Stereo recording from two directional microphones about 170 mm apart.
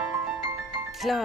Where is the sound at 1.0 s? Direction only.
Centre (ahead or behind).